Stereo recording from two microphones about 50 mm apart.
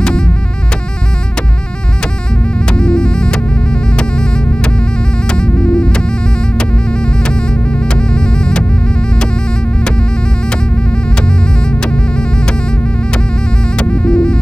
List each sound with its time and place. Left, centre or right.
2.7 s music: centre
7.9 s music: centre
13.7 s music: centre